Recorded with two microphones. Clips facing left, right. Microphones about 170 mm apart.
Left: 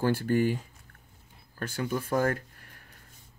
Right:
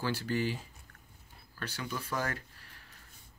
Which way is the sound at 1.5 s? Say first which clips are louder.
Left 8 dB; 45° left (ahead or behind).